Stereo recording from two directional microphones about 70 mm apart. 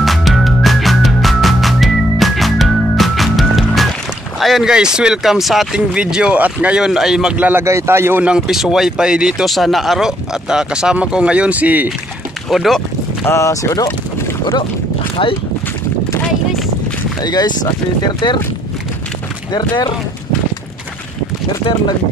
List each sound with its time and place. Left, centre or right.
0.0 s music: centre
4.4 s boat: centre
4.6 s speech: centre
6.8 s speech: centre
7.3 s speech: right
7.6 s a man's voice: right
8.4 s speech: centre; by 11.9 s right
12.4 s speech: centre
13.2 s speech: left
13.5 s speech: left
17.2 s speech: left